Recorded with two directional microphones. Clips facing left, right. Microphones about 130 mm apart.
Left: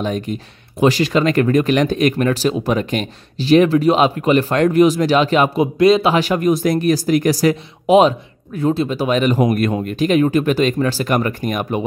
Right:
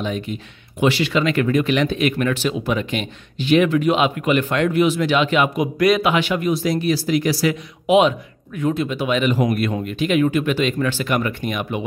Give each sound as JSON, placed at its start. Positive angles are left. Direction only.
{"t": 0.0, "sound": "speech", "side_deg": 45}
{"t": 6.1, "sound": "speech", "side_deg": 40}